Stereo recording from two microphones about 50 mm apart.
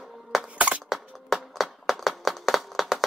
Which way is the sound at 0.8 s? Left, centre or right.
Centre.